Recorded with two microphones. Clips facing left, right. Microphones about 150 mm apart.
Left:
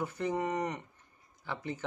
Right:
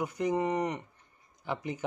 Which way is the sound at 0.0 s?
15° right (ahead or behind).